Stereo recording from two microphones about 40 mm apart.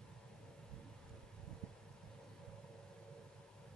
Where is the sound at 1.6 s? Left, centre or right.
Centre.